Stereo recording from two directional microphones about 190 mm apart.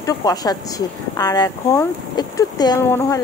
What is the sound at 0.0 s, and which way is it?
Speech, 20° left (ahead or behind).